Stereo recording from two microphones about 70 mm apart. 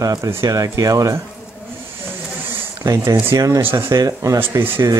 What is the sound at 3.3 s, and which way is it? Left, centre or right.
Speech, right.